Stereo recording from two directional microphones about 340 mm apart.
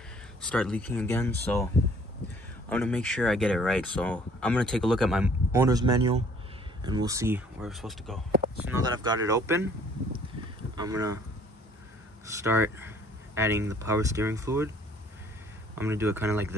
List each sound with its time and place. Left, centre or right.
0.4 s speech: centre
2.7 s speech: centre
10.8 s speech: centre
12.4 s speech: centre
15.7 s speech: centre